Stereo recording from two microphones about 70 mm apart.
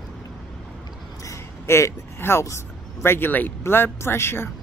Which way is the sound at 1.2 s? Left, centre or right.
Left.